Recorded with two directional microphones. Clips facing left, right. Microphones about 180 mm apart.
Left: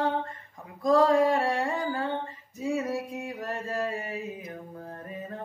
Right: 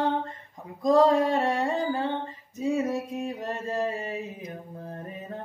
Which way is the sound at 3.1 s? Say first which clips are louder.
Right 3 dB; 25° right (ahead or behind).